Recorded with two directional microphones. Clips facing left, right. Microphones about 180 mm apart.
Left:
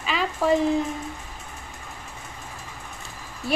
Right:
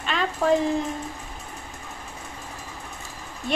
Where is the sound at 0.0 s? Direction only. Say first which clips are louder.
Even; 5° left (ahead or behind).